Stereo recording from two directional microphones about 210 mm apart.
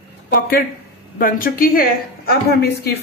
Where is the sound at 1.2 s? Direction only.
45° left (ahead or behind).